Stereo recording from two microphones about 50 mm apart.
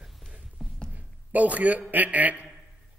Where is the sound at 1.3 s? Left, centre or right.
Right.